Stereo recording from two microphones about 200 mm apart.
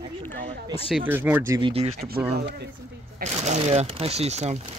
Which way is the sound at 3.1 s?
35° right (ahead or behind).